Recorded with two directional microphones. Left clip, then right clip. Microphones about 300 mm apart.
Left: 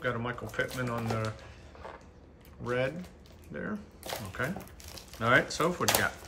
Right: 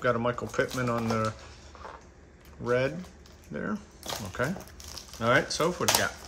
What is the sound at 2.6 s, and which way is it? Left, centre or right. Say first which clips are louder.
Speech: right 4 dB; centre.